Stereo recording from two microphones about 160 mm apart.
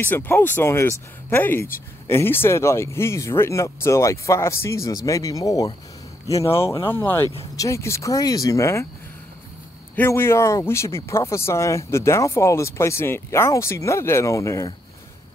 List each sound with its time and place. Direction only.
0.0 s speech: 10° left (ahead or behind)
9.9 s speech: 15° left (ahead or behind)